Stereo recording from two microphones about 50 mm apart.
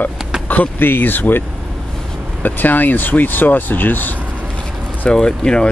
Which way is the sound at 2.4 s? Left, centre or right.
Left.